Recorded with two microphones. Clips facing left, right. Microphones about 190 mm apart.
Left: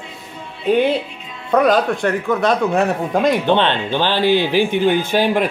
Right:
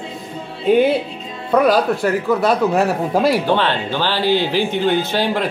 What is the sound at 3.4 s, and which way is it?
Speech, 20° left (ahead or behind).